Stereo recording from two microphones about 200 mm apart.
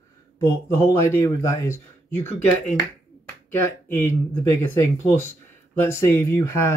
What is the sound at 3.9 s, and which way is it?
Speech, 10° left (ahead or behind).